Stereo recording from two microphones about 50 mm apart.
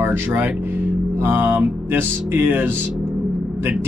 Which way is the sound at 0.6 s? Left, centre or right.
Right.